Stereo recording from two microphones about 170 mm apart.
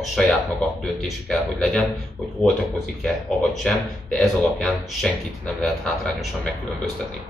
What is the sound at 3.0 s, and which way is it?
Speech, 5° left (ahead or behind).